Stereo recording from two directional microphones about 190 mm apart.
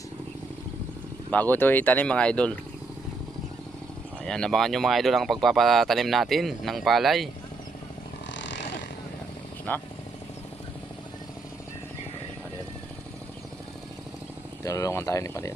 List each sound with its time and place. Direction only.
1.3 s speech: 10° left (ahead or behind)
4.3 s speech: 5° left (ahead or behind)
8.3 s a sound: 70° left (ahead or behind)
9.7 s speech: 10° left (ahead or behind)
14.6 s speech: 15° left (ahead or behind)